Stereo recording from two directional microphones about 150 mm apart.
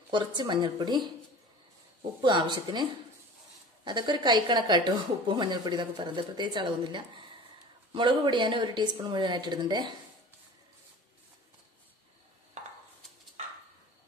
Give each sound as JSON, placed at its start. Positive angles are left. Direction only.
{"t": 0.1, "sound": "speech", "side_deg": -30}
{"t": 2.2, "sound": "speech", "side_deg": -30}